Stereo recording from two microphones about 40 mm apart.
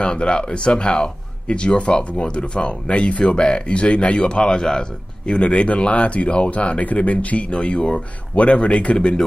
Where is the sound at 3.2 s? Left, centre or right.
Left.